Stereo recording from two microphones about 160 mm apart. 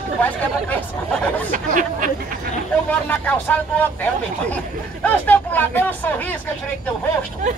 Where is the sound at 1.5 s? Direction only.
55° right (ahead or behind).